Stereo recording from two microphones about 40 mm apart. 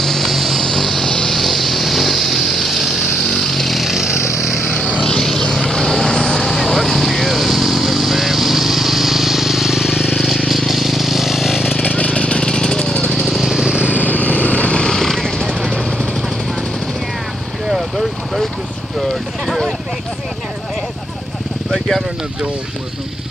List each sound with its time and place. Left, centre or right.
0.0 s vehicle: centre
1.3 s vehicle: centre
5.2 s vehicle: centre
10.1 s vehicle: centre
10.7 s vehicle: centre
11.7 s vehicle: left
13.1 s vehicle: centre
13.5 s vehicle: centre
13.7 s vehicle: right
14.0 s vehicle: left
15.0 s vehicle: centre
17.6 s vehicle: centre
21.7 s a sound: centre